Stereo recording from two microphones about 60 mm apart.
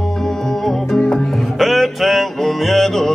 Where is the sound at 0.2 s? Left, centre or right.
Centre.